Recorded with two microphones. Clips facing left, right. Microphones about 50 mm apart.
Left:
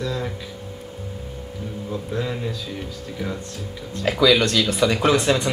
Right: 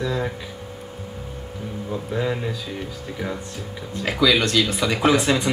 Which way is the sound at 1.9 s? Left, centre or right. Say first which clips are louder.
Right 2 dB; centre.